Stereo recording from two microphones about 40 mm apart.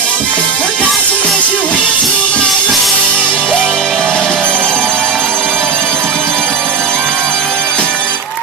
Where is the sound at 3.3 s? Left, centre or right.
Left.